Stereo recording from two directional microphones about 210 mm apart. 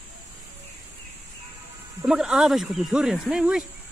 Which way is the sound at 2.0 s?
5° right (ahead or behind).